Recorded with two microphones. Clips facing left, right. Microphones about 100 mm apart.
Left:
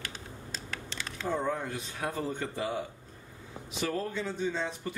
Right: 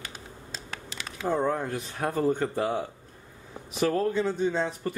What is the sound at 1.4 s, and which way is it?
Speech, 50° right (ahead or behind).